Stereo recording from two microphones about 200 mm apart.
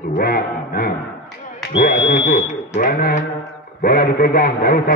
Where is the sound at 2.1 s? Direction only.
50° left (ahead or behind).